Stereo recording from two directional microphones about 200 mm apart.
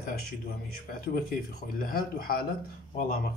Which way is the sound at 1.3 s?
45° left (ahead or behind).